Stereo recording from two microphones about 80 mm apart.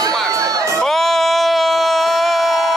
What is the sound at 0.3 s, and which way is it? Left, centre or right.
Crowd, right.